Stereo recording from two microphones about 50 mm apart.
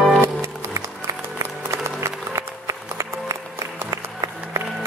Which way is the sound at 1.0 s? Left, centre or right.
Right.